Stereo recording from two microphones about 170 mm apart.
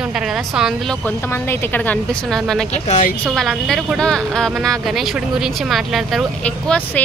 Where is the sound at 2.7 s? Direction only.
45° left (ahead or behind).